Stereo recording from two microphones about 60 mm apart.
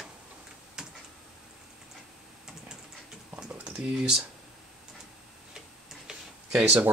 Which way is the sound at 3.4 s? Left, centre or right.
Centre.